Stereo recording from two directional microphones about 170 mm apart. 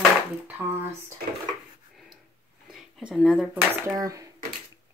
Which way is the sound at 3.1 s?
5° right (ahead or behind).